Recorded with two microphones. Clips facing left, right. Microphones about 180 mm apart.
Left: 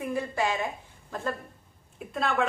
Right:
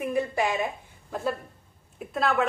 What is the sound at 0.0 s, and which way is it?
Speech, 20° right (ahead or behind).